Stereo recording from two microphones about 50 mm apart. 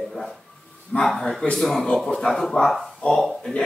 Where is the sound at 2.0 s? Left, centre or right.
Centre.